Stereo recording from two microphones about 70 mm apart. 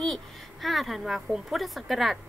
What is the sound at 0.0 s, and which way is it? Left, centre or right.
A woman's voice, centre.